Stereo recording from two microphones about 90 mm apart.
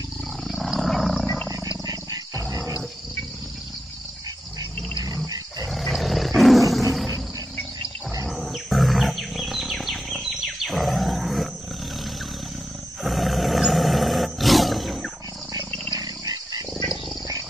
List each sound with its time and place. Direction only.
0.4 s roaring cats: centre (ahead or behind)
1.2 s wild animals: 15° left (ahead or behind)
1.9 s wild animals: 40° right (ahead or behind)
5.0 s a sound: 40° right (ahead or behind)
5.7 s roar: centre (ahead or behind)
8.3 s wild animals: centre (ahead or behind)
13.0 s roar: centre (ahead or behind)
15.9 s dog: 45° right (ahead or behind)